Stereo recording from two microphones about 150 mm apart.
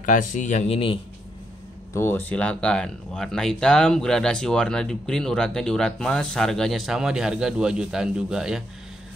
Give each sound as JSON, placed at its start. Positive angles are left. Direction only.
{"t": 0.0, "sound": "speech", "side_deg": 60}
{"t": 2.0, "sound": "speech", "side_deg": 15}